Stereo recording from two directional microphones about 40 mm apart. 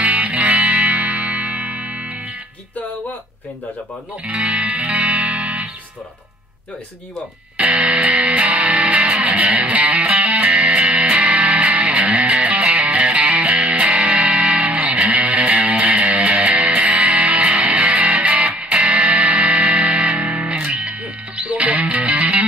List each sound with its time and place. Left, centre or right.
0.0 s music: right
4.2 s speech: right
4.7 s music: right
7.5 s music: right